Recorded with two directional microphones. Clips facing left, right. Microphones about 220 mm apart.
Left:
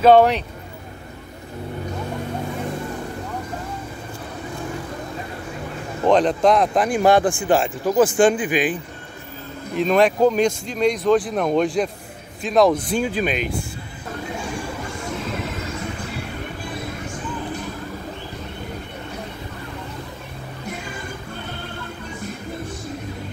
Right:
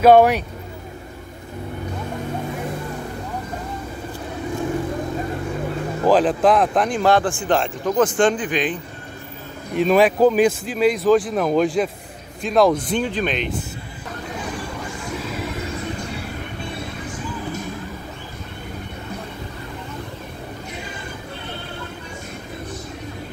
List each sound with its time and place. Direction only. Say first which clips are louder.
0.0 s speech: right 1 dB; 10° right (ahead or behind)
6.0 s speech: even; 5° right (ahead or behind)
6.9 s speech: left 2 dB; 15° left (ahead or behind)
9.8 s speech: right 1 dB; centre (ahead or behind)